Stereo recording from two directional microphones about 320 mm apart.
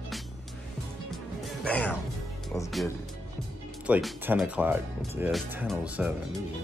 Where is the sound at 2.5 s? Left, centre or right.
Centre.